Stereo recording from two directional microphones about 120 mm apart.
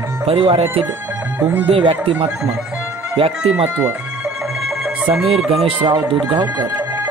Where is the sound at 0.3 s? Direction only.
50° right (ahead or behind).